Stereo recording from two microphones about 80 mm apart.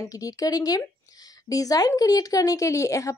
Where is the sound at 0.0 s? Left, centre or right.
Left.